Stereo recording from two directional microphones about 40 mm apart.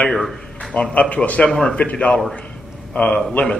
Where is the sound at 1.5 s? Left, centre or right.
Centre.